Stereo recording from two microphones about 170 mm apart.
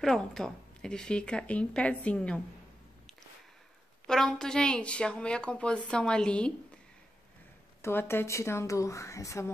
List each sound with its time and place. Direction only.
0.0 s a woman's voice: 5° left (ahead or behind)
4.1 s a woman's voice: 5° left (ahead or behind)
7.8 s speech: 15° left (ahead or behind)